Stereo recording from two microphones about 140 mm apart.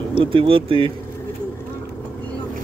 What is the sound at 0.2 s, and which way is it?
Speech, 40° right (ahead or behind).